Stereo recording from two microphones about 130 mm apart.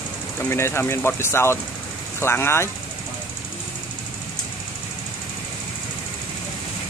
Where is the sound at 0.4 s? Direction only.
20° left (ahead or behind).